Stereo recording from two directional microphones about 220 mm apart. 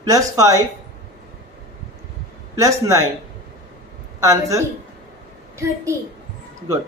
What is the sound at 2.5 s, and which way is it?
Speech, 15° right (ahead or behind).